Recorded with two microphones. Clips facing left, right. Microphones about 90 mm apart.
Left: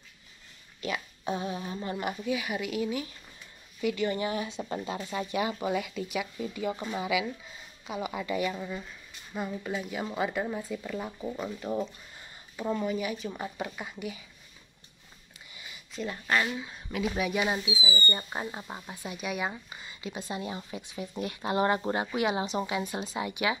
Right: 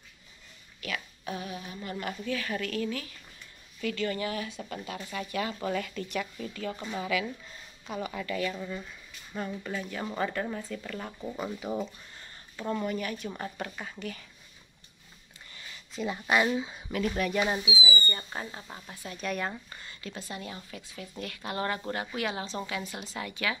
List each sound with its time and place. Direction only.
0.7 s speech: 25° left (ahead or behind); by 8.1 s 5° left (ahead or behind)
8.1 s speech: 15° left (ahead or behind)
15.5 s a sound: 10° left (ahead or behind)
16.1 s speech: 10° right (ahead or behind)
17.0 s speech: 5° left (ahead or behind)
18.1 s speech: 20° left (ahead or behind)
19.1 s speech: 10° left (ahead or behind)